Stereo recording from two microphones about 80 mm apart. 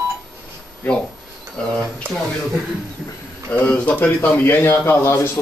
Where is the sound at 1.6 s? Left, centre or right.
Centre.